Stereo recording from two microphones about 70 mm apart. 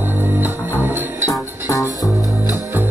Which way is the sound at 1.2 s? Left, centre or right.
Left.